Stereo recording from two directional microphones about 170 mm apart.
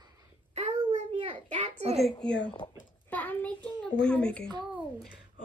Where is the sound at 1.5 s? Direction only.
40° right (ahead or behind).